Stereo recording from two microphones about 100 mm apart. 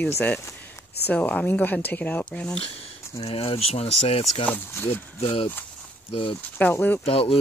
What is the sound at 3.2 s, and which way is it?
Speech, 85° left.